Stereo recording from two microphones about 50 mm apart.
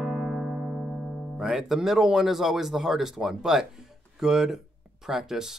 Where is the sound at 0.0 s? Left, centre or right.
Centre.